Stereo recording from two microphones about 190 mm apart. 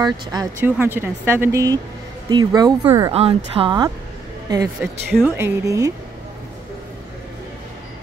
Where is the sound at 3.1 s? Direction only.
30° right (ahead or behind).